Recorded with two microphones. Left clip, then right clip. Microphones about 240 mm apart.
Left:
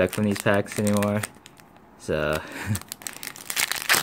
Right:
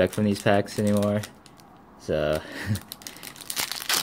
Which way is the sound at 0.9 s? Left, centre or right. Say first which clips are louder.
Even; centre.